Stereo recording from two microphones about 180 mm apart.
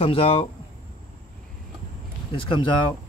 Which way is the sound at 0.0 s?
30° left (ahead or behind).